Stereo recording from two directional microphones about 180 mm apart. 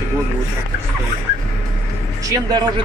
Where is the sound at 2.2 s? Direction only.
20° right (ahead or behind).